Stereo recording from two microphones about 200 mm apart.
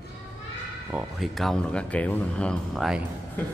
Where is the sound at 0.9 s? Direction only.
Centre (ahead or behind).